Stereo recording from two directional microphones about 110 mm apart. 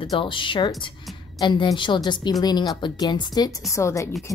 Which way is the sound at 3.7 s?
25° left (ahead or behind).